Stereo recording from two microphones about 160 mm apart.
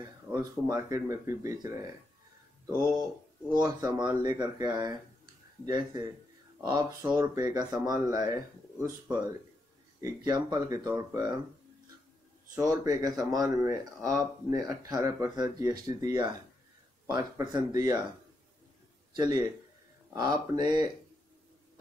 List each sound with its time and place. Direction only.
0.3 s speech: 20° right (ahead or behind)
3.5 s speech: 25° right (ahead or behind)
12.5 s speech: 20° right (ahead or behind)
19.1 s a man's voice: 25° right (ahead or behind)